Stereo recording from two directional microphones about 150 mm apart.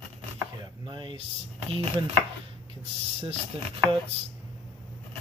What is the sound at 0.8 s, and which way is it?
Speech, 35° right (ahead or behind).